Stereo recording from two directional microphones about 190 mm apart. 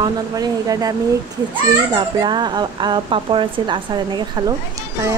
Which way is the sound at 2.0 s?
25° right (ahead or behind).